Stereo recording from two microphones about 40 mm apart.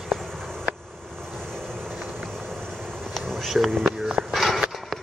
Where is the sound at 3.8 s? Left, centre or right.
Right.